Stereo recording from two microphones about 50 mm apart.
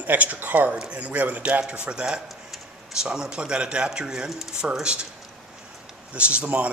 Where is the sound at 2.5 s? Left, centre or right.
Centre.